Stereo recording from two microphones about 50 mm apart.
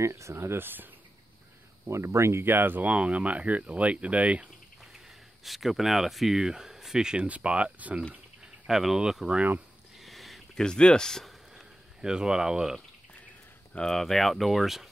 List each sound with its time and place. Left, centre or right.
0.0 s speech: right
0.6 s speech: right
1.9 s speech: right
2.4 s speech: right
2.8 s speech: right
5.4 s speech: centre
7.2 s speech: right
8.6 s speech: centre
9.9 s a sound: centre
10.5 s speech: centre
11.5 s a sound: centre
13.8 s speech: centre